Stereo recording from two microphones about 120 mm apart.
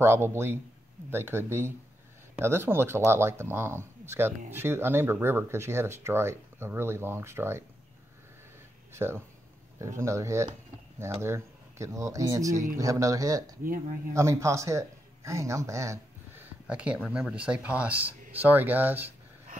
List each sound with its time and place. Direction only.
0.0 s speech: 20° right (ahead or behind)
8.9 s a man's voice: 20° right (ahead or behind)
16.6 s speech: 10° right (ahead or behind)